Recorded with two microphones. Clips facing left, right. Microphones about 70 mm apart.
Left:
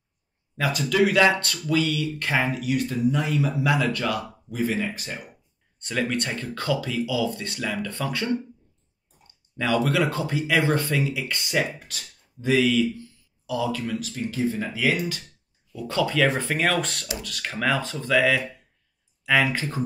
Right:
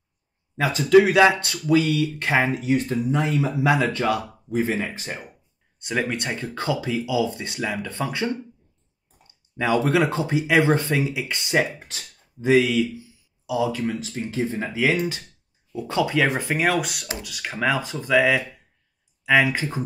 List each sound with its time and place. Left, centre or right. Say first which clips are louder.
0.6 s speech: right 6 dB; right